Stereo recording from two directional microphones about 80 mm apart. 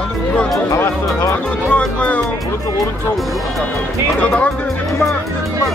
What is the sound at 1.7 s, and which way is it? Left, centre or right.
Speech, centre.